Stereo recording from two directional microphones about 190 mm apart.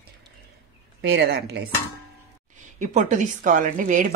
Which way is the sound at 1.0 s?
60° right (ahead or behind).